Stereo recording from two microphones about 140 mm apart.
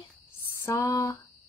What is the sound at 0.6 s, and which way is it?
Speech, 25° left (ahead or behind).